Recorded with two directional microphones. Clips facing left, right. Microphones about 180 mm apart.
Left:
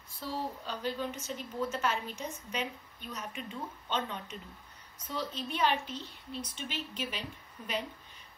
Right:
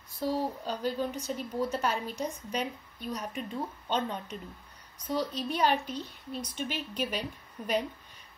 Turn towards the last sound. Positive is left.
turn(degrees=-45)  # may be behind; listen again after turning